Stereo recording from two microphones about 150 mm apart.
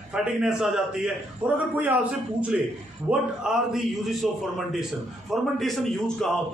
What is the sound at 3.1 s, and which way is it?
A man's voice, 5° right (ahead or behind).